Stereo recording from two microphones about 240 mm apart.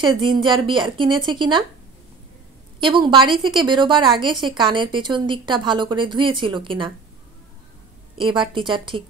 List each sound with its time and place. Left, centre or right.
0.0 s a woman's voice: centre
2.8 s a woman's voice: centre
8.2 s a woman's voice: centre